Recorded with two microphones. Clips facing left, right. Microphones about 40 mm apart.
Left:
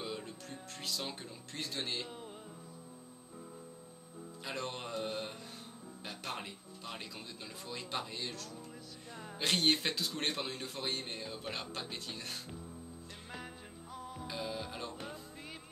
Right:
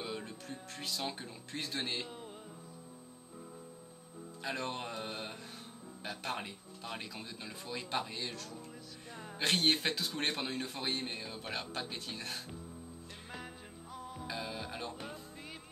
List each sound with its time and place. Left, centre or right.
0.0 s music: centre
4.5 s speech: centre
13.9 s music: centre